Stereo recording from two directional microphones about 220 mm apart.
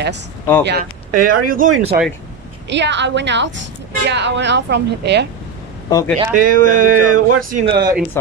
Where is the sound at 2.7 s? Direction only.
55° right (ahead or behind).